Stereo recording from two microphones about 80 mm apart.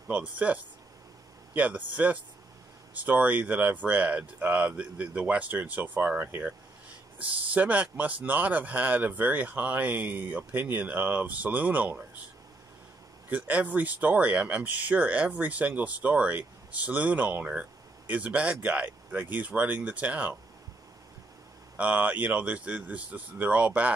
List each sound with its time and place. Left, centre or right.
0.1 s speech: centre
13.3 s speech: centre
21.7 s speech: centre